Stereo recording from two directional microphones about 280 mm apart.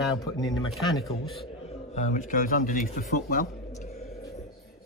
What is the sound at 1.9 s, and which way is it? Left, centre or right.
Speech, left.